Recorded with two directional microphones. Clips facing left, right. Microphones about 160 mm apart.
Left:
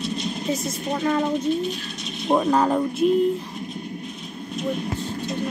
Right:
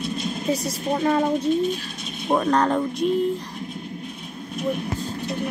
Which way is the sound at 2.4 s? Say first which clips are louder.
Left 1 dB; 5° left (ahead or behind).